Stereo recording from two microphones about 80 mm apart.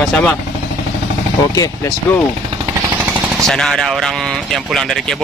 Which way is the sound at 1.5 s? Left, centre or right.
Left.